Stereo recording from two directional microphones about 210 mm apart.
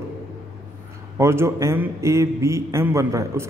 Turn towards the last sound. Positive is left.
turn(degrees=-15)  # may be behind; listen again after turning